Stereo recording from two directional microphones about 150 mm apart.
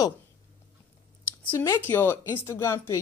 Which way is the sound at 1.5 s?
15° left (ahead or behind).